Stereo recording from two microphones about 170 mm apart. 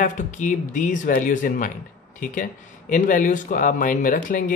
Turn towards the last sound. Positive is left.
turn(degrees=50)  # may be behind; listen again after turning